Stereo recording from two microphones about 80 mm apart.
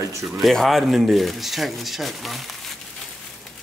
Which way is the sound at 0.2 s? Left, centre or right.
Centre.